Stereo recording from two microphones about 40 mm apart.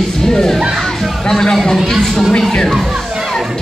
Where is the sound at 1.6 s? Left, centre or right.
Centre.